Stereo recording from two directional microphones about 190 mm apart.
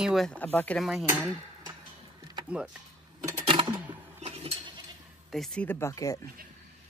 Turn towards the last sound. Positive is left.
turn(degrees=15)  # may be behind; listen again after turning